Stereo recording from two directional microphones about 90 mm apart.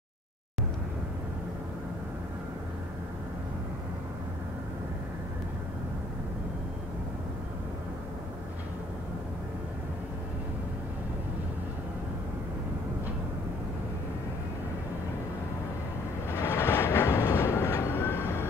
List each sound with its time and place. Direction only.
16.3 s train: 30° left (ahead or behind)